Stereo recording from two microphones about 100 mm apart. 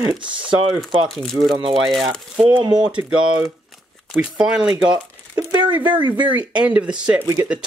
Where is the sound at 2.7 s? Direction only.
50° right (ahead or behind).